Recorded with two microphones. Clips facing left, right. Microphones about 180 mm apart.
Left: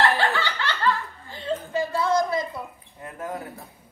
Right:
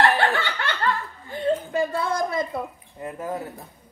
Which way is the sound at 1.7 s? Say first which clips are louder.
Left 1 dB; 55° right (ahead or behind).